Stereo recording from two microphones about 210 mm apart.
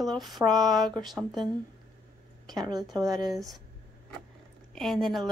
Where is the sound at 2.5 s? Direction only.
20° right (ahead or behind).